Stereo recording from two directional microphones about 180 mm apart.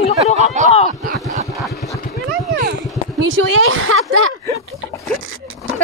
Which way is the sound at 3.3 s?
90° right.